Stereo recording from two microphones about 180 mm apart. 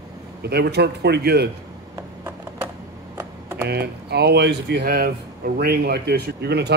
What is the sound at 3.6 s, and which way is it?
Speech, 65° right (ahead or behind).